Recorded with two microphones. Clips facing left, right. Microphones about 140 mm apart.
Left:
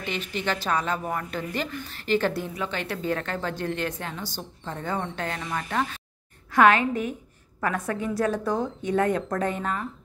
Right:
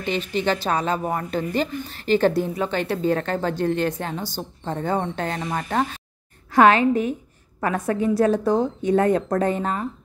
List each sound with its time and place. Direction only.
0.0 s a woman's voice: 30° right (ahead or behind)